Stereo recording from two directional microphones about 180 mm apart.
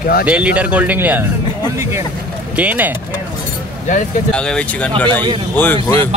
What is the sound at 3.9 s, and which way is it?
Speech, 45° left (ahead or behind).